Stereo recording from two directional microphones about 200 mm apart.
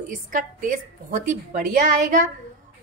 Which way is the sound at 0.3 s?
40° right (ahead or behind).